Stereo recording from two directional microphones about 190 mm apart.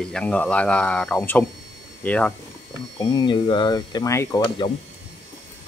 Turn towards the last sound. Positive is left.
turn(degrees=25)  # may be behind; listen again after turning